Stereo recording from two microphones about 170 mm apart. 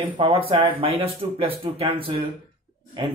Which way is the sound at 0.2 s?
35° right (ahead or behind).